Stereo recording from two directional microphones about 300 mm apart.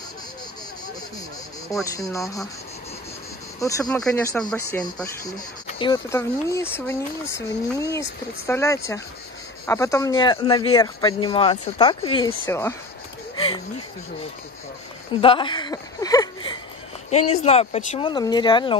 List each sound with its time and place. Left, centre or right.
2.0 s speech: centre
3.6 s speech: centre
15.1 s speech: centre
17.1 s speech: left